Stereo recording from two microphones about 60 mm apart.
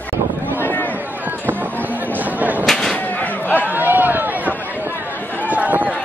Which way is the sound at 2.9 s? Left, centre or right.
Left.